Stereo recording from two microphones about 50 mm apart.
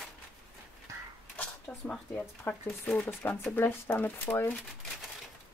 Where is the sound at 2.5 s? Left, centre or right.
Left.